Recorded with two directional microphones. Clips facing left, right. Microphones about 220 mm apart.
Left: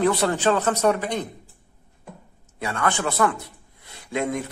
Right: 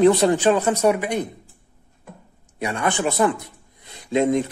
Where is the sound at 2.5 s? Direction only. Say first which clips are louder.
Right 2 dB; 15° right (ahead or behind).